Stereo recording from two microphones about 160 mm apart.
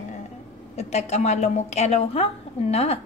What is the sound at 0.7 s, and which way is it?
A woman's voice, 45° left (ahead or behind).